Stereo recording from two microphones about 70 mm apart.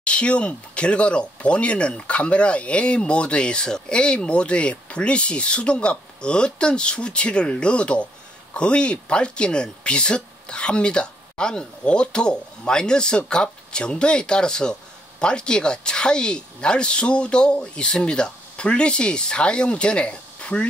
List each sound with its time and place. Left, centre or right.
0.0 s speech: centre